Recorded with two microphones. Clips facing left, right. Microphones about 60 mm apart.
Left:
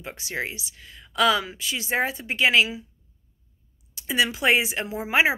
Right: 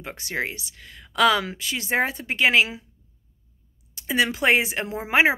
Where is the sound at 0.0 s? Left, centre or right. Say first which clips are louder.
Right 2 dB; right.